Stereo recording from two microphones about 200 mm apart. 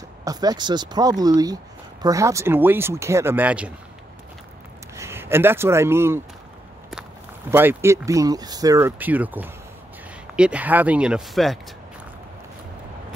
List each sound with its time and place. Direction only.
0.2 s speech: 20° right (ahead or behind)
4.9 s speech: 10° right (ahead or behind)
7.5 s speech: 10° right (ahead or behind)